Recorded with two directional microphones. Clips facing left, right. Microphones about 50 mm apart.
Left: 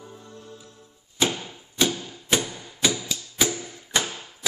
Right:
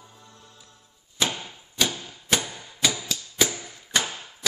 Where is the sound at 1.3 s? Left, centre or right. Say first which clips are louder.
Left 2 dB; centre.